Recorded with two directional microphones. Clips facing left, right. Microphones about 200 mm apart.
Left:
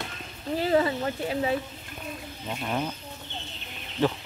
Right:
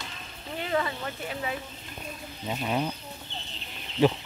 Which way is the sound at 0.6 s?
30° left (ahead or behind).